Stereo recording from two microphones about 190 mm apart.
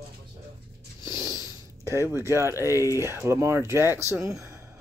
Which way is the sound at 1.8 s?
15° right (ahead or behind).